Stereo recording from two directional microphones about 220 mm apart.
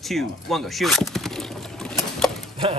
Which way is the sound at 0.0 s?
Centre (ahead or behind).